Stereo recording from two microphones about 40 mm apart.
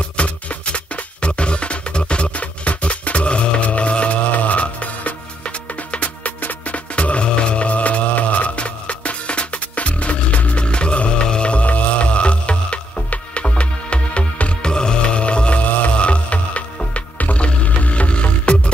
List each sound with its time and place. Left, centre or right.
0.2 s music: left